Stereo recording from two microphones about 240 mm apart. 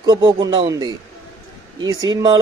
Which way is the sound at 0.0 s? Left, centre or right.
Centre.